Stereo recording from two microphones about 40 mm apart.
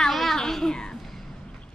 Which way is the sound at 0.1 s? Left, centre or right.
Centre.